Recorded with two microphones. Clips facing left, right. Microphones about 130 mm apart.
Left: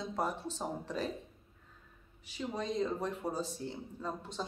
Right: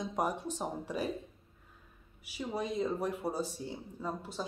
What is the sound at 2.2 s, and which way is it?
Speech, 10° right (ahead or behind).